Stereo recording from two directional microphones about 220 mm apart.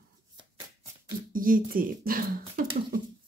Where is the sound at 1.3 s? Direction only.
40° right (ahead or behind).